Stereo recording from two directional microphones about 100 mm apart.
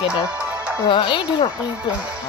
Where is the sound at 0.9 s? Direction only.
55° left (ahead or behind).